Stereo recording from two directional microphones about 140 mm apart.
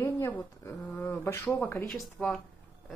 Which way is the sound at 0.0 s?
20° left (ahead or behind).